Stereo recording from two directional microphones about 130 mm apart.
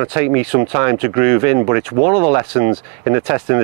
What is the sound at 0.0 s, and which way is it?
Speech, 20° right (ahead or behind).